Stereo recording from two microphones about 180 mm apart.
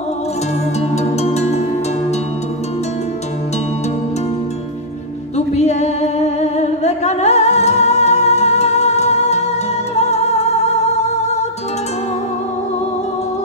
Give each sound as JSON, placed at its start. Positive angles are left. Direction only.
{"t": 1.2, "sound": "music", "side_deg": 40}
{"t": 5.6, "sound": "music", "side_deg": 40}